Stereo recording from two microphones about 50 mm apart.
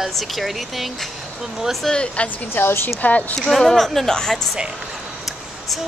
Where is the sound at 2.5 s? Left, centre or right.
Left.